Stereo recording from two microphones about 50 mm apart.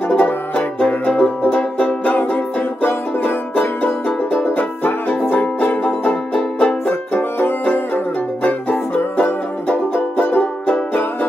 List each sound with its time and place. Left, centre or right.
0.1 s music: left
3.5 s music: left
6.9 s music: left